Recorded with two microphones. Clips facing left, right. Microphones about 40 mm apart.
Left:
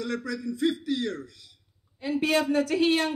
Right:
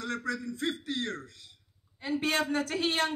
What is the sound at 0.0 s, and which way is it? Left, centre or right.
A man's voice, right.